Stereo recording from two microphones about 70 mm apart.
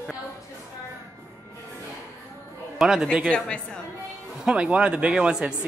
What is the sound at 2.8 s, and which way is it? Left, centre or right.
Speech, centre.